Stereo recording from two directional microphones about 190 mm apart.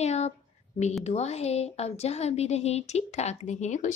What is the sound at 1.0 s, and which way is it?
A woman's voice, 35° left (ahead or behind).